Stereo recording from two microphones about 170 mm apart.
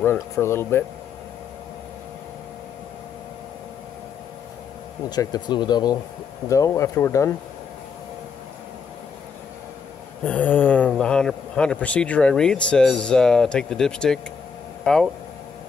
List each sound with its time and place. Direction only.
0.0 s speech: 15° left (ahead or behind)
5.1 s speech: 25° left (ahead or behind)
10.2 s speech: 10° left (ahead or behind)